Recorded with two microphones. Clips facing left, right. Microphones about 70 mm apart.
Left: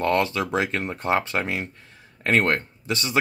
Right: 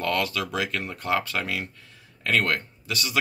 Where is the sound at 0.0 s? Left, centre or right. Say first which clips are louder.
Left 4 dB; left.